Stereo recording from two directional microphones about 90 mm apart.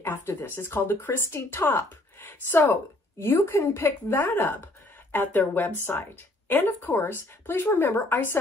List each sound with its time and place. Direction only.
0.0 s speech: 30° left (ahead or behind)